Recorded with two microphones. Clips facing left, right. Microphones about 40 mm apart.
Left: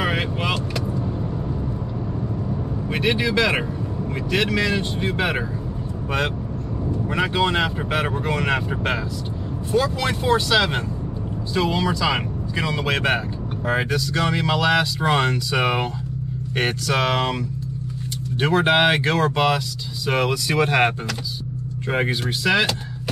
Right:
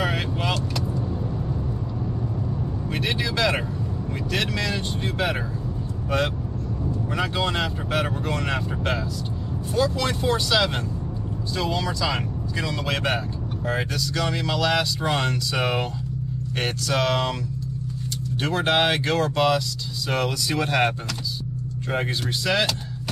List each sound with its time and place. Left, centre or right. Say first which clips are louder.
0.0 s vehicle: left 2 dB; centre
2.9 s speech: left 6 dB; centre
7.1 s speech: left 5 dB; centre
18.4 s speech: left 4 dB; centre
21.9 s speech: left 3 dB; centre